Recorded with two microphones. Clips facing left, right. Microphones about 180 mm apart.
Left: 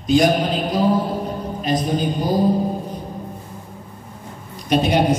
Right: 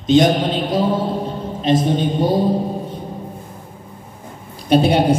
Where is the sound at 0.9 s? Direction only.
25° right (ahead or behind).